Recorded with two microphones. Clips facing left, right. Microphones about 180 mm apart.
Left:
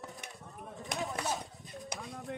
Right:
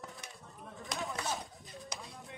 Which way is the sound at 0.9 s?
20° left (ahead or behind).